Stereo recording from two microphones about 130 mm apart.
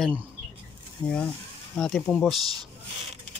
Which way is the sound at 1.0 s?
30° left (ahead or behind).